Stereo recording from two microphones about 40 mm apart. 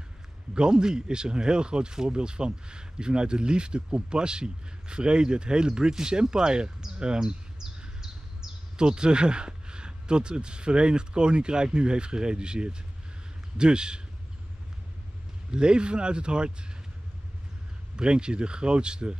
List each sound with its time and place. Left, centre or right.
0.6 s speech: right
7.0 s bird: right
8.7 s speech: right
15.5 s speech: right
17.9 s speech: right